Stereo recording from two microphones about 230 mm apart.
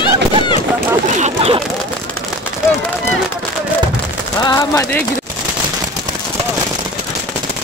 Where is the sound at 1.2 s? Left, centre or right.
Right.